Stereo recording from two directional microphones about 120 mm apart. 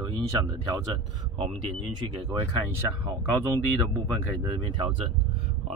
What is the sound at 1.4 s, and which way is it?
Speech, 45° right (ahead or behind).